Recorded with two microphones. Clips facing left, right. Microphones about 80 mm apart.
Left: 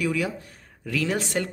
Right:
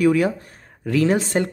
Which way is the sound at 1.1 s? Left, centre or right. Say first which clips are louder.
Right 6 dB; right.